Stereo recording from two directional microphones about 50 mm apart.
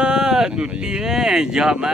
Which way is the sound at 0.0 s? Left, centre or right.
Centre.